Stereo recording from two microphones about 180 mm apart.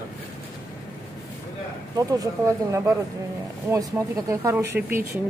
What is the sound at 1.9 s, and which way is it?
Speech, 20° right (ahead or behind).